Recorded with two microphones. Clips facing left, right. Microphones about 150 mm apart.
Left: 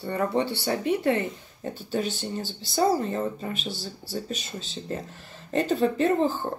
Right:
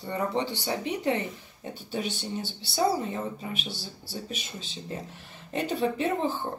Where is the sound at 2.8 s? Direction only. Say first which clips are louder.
Left 3 dB; 10° right (ahead or behind).